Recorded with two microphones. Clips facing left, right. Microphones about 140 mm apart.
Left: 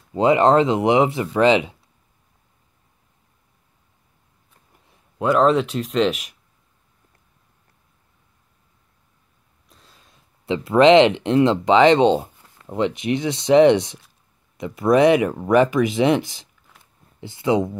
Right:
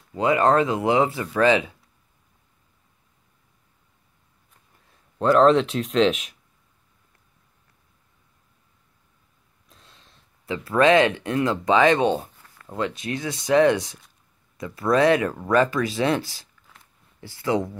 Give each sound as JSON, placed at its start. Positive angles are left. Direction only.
{"t": 0.1, "sound": "speech", "side_deg": 25}
{"t": 4.8, "sound": "speech", "side_deg": 10}
{"t": 9.7, "sound": "a sound", "side_deg": 0}
{"t": 10.4, "sound": "speech", "side_deg": 20}